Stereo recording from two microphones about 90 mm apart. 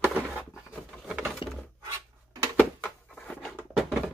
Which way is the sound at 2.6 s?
15° left (ahead or behind).